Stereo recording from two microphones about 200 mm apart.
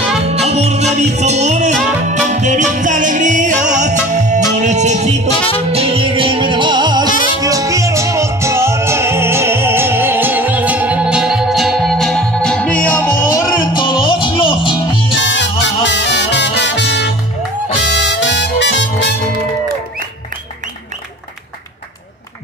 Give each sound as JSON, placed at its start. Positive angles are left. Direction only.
{"t": 0.3, "sound": "music", "side_deg": -35}
{"t": 7.1, "sound": "music", "side_deg": 40}
{"t": 7.3, "sound": "music", "side_deg": -15}
{"t": 15.1, "sound": "music", "side_deg": 65}